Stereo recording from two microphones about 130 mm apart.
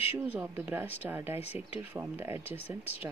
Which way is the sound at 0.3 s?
15° right (ahead or behind).